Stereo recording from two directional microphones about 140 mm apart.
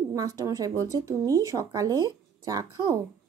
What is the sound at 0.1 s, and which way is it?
Speech, 25° right (ahead or behind).